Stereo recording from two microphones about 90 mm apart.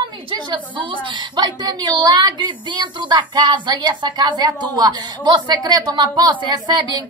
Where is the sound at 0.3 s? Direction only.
65° right (ahead or behind).